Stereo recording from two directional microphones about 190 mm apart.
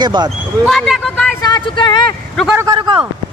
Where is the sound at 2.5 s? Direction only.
20° right (ahead or behind).